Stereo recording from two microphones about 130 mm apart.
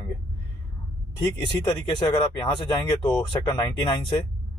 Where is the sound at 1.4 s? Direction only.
35° left (ahead or behind).